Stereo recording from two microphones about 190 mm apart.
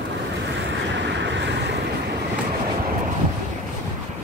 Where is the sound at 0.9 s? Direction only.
65° right (ahead or behind).